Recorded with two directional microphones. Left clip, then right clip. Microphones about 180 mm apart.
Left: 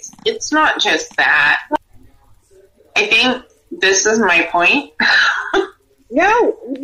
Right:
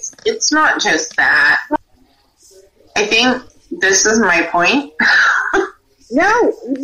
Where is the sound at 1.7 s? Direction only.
20° right (ahead or behind).